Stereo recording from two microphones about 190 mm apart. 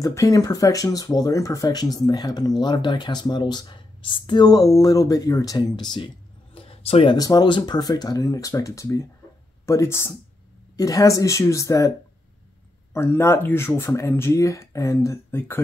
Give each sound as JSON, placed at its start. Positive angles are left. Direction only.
{"t": 0.0, "sound": "speech", "side_deg": 15}
{"t": 7.2, "sound": "speech", "side_deg": 20}
{"t": 12.9, "sound": "speech", "side_deg": 10}